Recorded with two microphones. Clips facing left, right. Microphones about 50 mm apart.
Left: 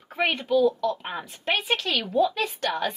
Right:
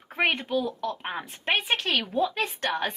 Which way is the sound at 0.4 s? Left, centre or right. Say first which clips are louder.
Left 7 dB; right.